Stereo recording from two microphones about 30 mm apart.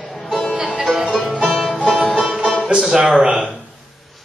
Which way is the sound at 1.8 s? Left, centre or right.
Right.